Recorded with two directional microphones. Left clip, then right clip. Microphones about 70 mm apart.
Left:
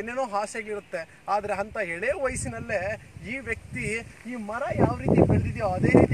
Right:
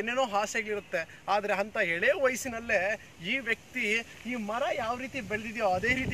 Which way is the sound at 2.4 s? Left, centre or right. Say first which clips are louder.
Right 1 dB; left.